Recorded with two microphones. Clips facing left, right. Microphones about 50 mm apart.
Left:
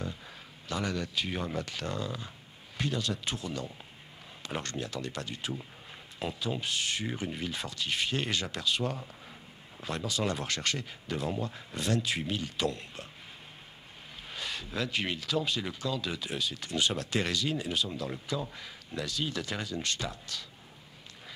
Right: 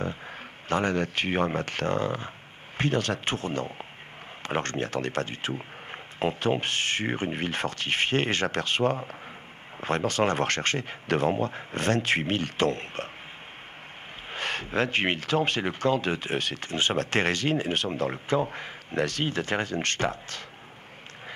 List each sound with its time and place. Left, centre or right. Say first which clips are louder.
0.7 s speech: right 8 dB; right
14.3 s speech: right 8 dB; right